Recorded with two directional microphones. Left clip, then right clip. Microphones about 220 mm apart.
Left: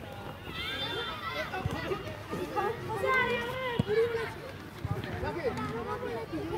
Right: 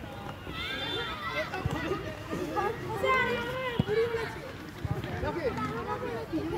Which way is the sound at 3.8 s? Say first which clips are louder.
Even; 50° left (ahead or behind).